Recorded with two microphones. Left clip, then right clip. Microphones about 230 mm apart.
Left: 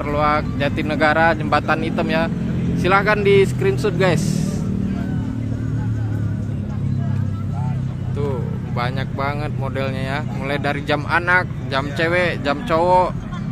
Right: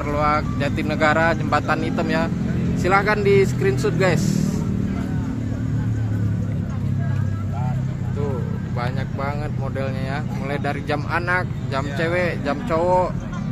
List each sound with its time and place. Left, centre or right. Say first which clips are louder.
0.1 s speech: left 2 dB; centre
8.7 s speech: left 4 dB; centre
10.5 s speech: left 4 dB; centre